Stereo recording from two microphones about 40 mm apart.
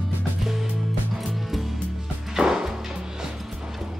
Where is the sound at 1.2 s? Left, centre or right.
Centre.